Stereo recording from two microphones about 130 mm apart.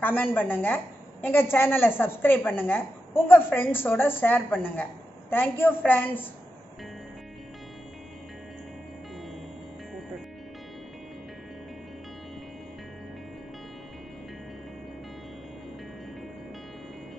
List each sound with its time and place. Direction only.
0.0 s a woman's voice: 15° left (ahead or behind)